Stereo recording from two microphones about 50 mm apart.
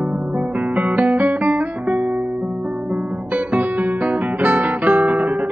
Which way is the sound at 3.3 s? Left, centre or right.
Right.